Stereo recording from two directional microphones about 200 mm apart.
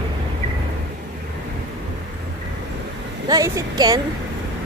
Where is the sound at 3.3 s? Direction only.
20° right (ahead or behind).